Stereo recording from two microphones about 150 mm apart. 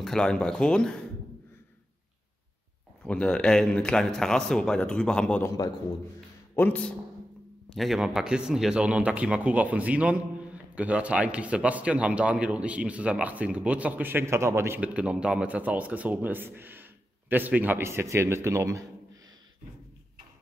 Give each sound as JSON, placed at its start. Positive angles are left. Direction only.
{"t": 0.0, "sound": "a man's voice", "side_deg": 5}
{"t": 3.0, "sound": "a man's voice", "side_deg": 5}
{"t": 6.5, "sound": "a man's voice", "side_deg": 10}
{"t": 7.7, "sound": "speech", "side_deg": 0}